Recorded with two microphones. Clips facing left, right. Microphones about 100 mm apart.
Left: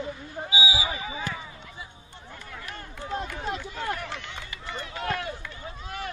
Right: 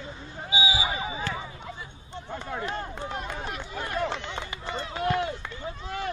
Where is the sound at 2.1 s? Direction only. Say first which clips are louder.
Right 13 dB; 25° right (ahead or behind).